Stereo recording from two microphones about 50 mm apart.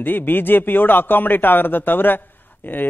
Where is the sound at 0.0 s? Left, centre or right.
Left.